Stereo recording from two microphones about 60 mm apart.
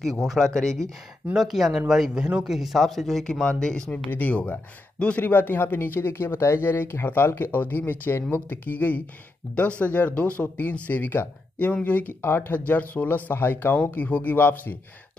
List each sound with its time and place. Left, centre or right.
0.2 s speech: centre
1.3 s speech: centre
2.5 s speech: centre
3.4 s speech: centre
4.1 s speech: left
5.2 s speech: left
12.2 s speech: left
12.5 s speech: left